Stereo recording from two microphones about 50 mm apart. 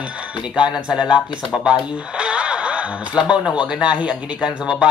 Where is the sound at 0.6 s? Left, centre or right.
Centre.